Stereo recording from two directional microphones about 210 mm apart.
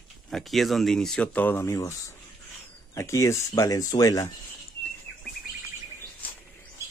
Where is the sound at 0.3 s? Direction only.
Centre (ahead or behind); by 4.3 s 15° left (ahead or behind).